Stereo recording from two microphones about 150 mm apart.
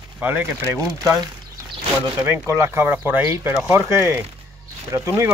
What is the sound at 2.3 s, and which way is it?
Speech, 15° right (ahead or behind).